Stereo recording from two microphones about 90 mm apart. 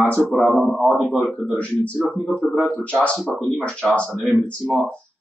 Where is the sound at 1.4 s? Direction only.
15° left (ahead or behind).